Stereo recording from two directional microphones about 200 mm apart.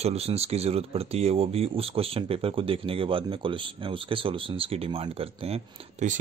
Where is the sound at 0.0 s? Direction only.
30° right (ahead or behind).